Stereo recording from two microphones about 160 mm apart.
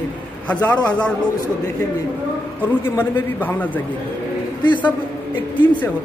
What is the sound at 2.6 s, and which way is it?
A man's voice, 15° left (ahead or behind).